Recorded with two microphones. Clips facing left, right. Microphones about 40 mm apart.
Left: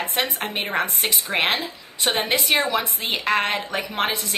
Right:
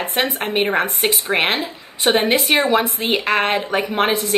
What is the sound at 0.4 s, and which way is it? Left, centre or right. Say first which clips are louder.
A woman's voice: right 6 dB; right.